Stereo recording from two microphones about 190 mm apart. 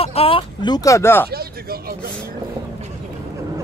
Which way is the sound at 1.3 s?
55° right (ahead or behind).